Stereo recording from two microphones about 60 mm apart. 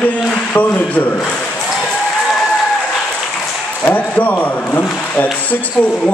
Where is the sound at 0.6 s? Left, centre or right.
Left.